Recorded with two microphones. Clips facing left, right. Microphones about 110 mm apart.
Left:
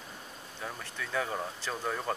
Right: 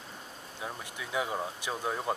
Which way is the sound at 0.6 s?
15° right (ahead or behind).